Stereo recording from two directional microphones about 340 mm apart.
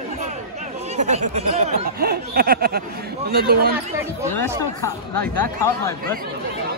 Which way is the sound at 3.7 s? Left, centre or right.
Centre.